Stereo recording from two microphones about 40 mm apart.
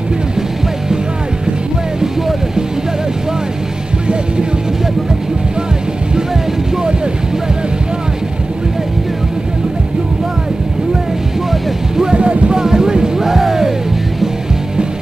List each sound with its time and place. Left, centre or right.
2.0 s music: centre
12.0 s music: right
12.5 s music: centre